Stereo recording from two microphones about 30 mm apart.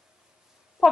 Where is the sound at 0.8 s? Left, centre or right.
Centre.